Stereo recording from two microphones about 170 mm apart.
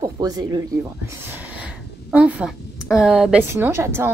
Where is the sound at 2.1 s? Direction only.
5° right (ahead or behind).